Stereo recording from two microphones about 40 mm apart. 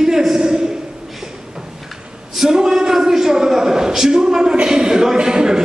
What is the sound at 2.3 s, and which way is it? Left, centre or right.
A man's voice, centre.